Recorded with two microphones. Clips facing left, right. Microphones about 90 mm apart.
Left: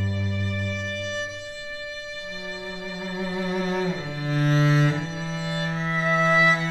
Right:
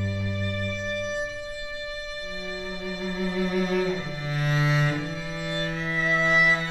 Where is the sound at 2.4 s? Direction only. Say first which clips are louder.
Right 1 dB; 25° left (ahead or behind).